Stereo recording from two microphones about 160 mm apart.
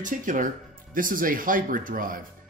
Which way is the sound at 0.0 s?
55° right (ahead or behind).